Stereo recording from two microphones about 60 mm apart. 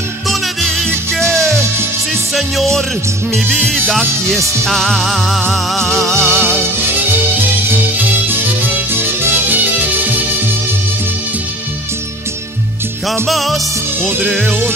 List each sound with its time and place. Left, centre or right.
0.3 s music: centre
2.3 s music: centre
13.3 s music: centre